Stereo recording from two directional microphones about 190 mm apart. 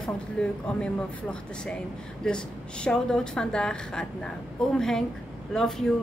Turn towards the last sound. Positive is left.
turn(degrees=0)  # may be behind; listen again after turning